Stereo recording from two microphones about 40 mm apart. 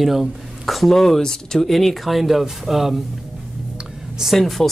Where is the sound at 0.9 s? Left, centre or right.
Centre.